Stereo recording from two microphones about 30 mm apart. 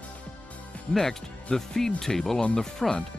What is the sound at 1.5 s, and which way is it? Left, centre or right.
Speech, centre.